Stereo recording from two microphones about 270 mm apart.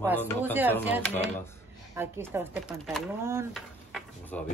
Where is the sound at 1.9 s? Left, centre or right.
Centre.